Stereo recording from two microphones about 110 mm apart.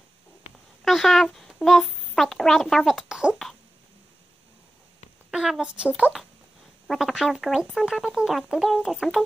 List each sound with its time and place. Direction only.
0.5 s a sound: 90° left
0.8 s speech: centre (ahead or behind)
5.3 s speech: 5° right (ahead or behind)